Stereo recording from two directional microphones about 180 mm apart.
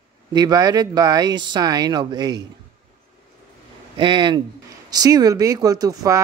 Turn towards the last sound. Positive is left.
turn(degrees=-20)  # may be behind; listen again after turning